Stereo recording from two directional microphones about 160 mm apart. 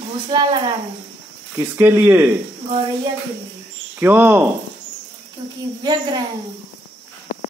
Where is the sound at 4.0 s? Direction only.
10° right (ahead or behind).